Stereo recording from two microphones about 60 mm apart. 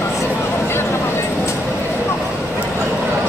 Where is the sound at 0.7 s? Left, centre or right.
Left.